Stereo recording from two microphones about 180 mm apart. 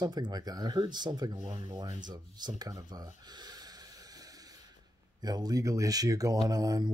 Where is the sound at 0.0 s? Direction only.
25° right (ahead or behind).